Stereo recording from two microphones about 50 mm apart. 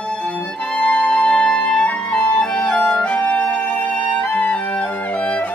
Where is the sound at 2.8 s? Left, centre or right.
Left.